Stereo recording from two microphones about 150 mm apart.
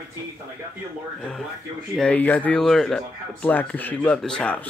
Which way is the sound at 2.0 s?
10° left (ahead or behind).